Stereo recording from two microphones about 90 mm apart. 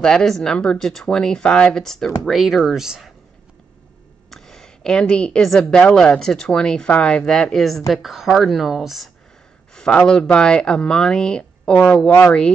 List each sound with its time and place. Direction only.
0.0 s a woman's voice: 5° left (ahead or behind)
4.3 s a woman's voice: 5° left (ahead or behind)
9.8 s a woman's voice: 10° left (ahead or behind)
12.1 s speech: 30° left (ahead or behind)